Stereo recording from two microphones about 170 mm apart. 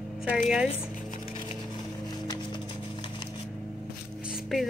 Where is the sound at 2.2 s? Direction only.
25° left (ahead or behind).